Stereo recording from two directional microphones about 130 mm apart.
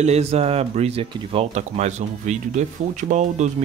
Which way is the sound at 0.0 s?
55° right (ahead or behind).